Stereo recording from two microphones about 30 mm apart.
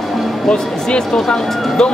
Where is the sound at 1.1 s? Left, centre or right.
Left.